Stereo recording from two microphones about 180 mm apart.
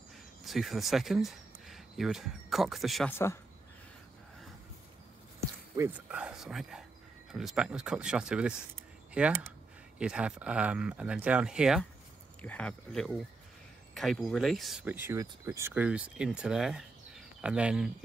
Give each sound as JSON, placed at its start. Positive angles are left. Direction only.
{"t": 0.4, "sound": "speech", "side_deg": 0}
{"t": 3.1, "sound": "speech", "side_deg": 15}
{"t": 5.4, "sound": "a sound", "side_deg": -15}
{"t": 6.0, "sound": "speech", "side_deg": -5}
{"t": 12.4, "sound": "speech", "side_deg": 5}